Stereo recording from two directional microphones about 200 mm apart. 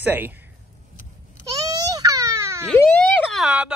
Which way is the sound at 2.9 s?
Centre (ahead or behind).